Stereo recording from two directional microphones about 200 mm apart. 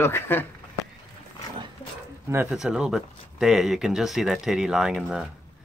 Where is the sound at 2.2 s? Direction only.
10° right (ahead or behind).